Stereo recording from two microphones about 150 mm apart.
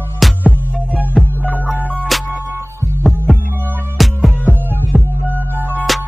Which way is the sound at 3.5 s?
10° right (ahead or behind).